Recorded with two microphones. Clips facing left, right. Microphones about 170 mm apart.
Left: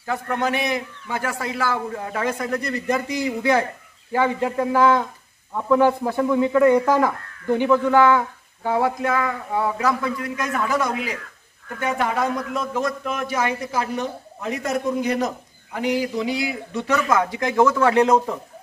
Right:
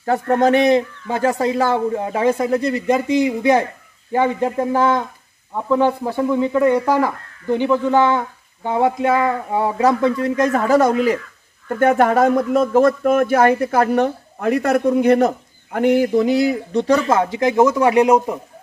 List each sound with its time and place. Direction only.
0.0 s a man's voice: 40° right (ahead or behind); by 18.4 s 10° right (ahead or behind)